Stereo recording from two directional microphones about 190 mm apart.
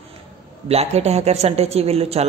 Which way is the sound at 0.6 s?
35° right (ahead or behind).